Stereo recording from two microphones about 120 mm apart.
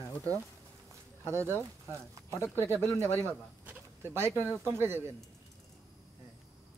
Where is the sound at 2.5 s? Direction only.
20° right (ahead or behind).